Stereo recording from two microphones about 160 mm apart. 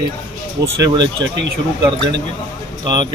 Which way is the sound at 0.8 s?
25° right (ahead or behind).